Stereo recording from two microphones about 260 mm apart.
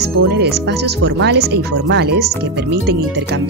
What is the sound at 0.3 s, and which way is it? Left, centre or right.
Speech, right.